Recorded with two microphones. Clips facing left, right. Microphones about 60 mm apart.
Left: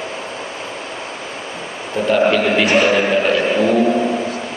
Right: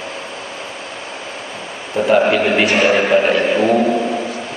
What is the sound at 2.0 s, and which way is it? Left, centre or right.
A man's voice, centre.